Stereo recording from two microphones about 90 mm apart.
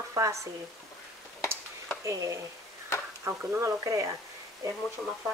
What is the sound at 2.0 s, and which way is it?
Speech, 35° right (ahead or behind).